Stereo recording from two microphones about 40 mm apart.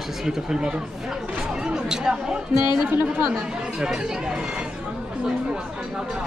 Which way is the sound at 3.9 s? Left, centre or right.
Centre.